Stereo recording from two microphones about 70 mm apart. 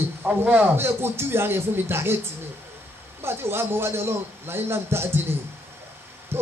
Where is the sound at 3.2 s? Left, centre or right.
Right.